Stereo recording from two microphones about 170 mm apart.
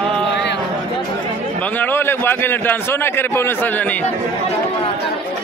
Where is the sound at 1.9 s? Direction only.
15° left (ahead or behind).